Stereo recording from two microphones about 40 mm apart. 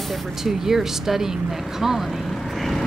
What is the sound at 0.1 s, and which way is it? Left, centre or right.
Speech, centre.